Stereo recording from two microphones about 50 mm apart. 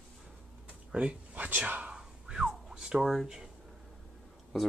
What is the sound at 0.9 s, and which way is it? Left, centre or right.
Speech, right.